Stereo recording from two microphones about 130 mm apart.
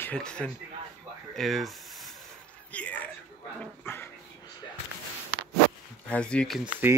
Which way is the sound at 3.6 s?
15° left (ahead or behind).